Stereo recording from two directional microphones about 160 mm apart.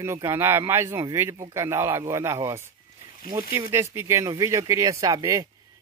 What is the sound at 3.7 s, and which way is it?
Speech, 15° right (ahead or behind).